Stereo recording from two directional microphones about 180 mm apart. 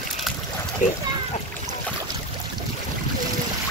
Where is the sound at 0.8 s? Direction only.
45° left (ahead or behind).